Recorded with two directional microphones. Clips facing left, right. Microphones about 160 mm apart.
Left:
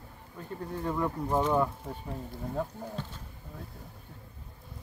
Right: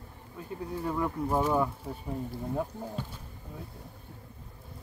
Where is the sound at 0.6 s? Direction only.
5° right (ahead or behind).